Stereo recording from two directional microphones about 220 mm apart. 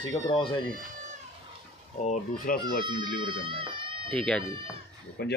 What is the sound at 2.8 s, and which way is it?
Speech, 20° right (ahead or behind).